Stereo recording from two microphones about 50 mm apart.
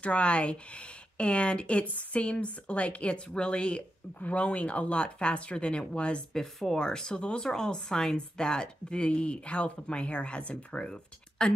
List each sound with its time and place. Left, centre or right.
0.0 s speech: left
6.3 s speech: centre